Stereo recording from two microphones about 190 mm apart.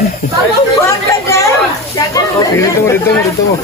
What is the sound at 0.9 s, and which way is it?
Chatter, 15° left (ahead or behind).